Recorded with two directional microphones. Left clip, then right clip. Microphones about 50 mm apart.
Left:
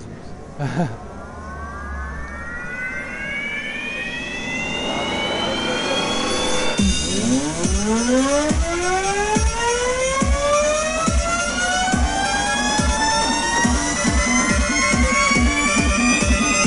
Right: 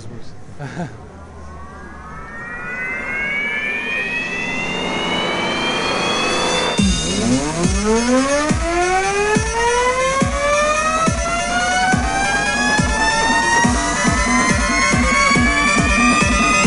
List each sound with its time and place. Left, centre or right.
0.8 s moo: left
3.1 s vehicle: right